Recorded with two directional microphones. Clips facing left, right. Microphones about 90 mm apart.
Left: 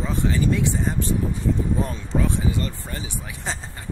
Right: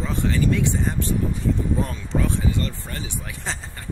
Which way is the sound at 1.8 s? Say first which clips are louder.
Even; 20° left (ahead or behind).